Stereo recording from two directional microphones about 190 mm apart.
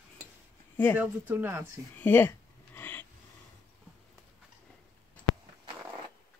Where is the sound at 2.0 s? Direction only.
10° left (ahead or behind).